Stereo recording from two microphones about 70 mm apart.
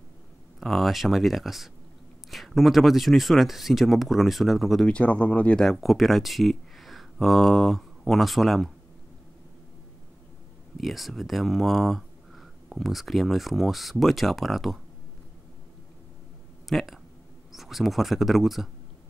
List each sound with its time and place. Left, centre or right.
0.6 s speech: centre
4.8 s speech: centre
5.6 s speech: centre
10.8 s speech: centre
16.6 s speech: centre